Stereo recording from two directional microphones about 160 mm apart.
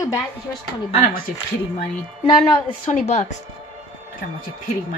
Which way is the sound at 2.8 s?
50° left (ahead or behind).